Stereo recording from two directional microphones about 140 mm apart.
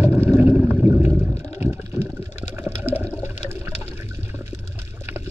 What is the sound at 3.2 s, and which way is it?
Toilet flush, 15° right (ahead or behind).